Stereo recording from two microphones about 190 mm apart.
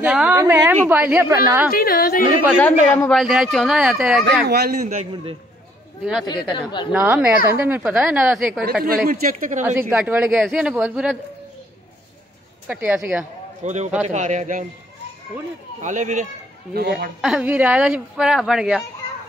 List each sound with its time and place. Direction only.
0.0 s a sound: 5° right (ahead or behind)
0.4 s a woman's voice: 10° right (ahead or behind)
1.7 s a woman's voice: 50° left (ahead or behind)
2.6 s speech: 5° left (ahead or behind)
4.5 s a man's voice: 55° right (ahead or behind)
6.2 s speech: 25° left (ahead or behind)
6.9 s a woman's voice: 10° right (ahead or behind)
9.1 s speech: 40° right (ahead or behind)
9.8 s a woman's voice: 10° right (ahead or behind)
12.6 s a woman's voice: 5° right (ahead or behind)
13.7 s speech: 40° right (ahead or behind)
15.8 s speech: 40° right (ahead or behind)
16.7 s a man's voice: 60° right (ahead or behind)
17.2 s speech: 5° right (ahead or behind)